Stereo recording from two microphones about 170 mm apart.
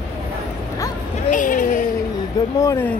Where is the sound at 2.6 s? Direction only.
20° left (ahead or behind).